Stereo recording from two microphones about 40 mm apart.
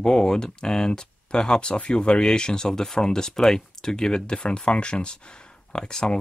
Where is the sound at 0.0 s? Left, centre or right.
Centre.